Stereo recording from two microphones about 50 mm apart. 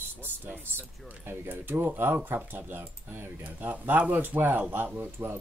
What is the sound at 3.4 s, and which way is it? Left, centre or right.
Speech, right.